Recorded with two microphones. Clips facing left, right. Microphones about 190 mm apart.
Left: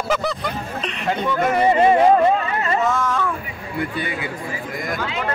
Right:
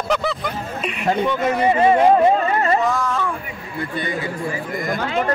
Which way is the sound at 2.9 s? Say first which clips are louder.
Even; centre (ahead or behind).